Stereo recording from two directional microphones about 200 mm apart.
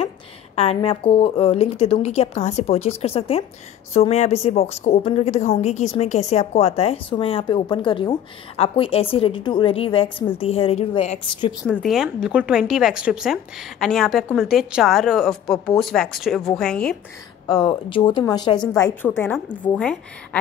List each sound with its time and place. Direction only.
0.6 s a woman's voice: 30° left (ahead or behind)
11.6 s a woman's voice: 5° left (ahead or behind)
17.5 s a woman's voice: 20° left (ahead or behind); by 20.0 s 5° left (ahead or behind)